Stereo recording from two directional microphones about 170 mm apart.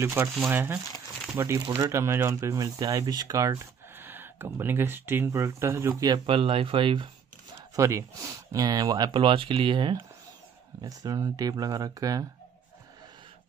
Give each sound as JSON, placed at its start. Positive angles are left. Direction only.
{"t": 0.0, "sound": "speech", "side_deg": -15}
{"t": 7.7, "sound": "speech", "side_deg": -15}